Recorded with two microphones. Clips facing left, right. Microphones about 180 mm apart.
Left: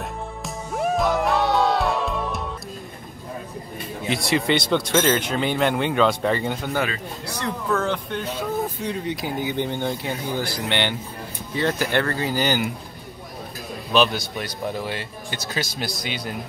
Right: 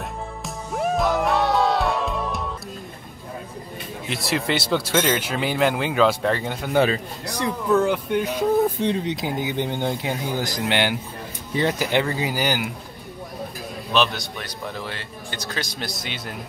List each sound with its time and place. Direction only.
0.4 s music: centre (ahead or behind)
4.1 s speech: centre (ahead or behind)
7.2 s speech: 15° right (ahead or behind)
13.9 s speech: centre (ahead or behind)